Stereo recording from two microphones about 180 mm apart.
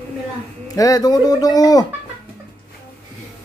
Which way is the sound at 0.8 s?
20° left (ahead or behind).